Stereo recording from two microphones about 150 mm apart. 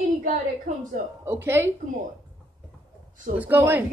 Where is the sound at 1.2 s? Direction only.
15° right (ahead or behind).